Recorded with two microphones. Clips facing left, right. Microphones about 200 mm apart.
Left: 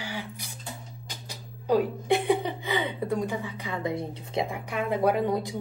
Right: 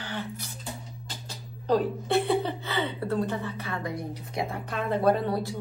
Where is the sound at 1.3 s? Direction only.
10° left (ahead or behind).